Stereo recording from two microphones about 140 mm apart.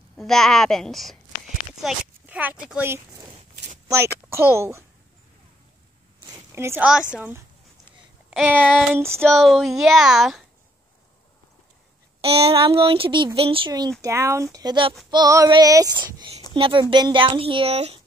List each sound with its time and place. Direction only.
0.2 s speech: centre (ahead or behind)
1.7 s a sound: 5° right (ahead or behind)
2.6 s child singing: 10° right (ahead or behind)
6.1 s a sound: 25° right (ahead or behind)
6.8 s child singing: 5° right (ahead or behind)
9.1 s speech: 5° left (ahead or behind)
12.2 s speech: 45° right (ahead or behind)
14.0 s child singing: 20° right (ahead or behind)
16.5 s speech: 40° right (ahead or behind)